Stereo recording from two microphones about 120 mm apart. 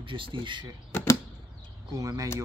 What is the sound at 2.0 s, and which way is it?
Speech, 30° right (ahead or behind).